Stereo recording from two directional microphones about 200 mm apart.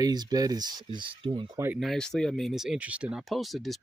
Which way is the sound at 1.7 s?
Centre (ahead or behind).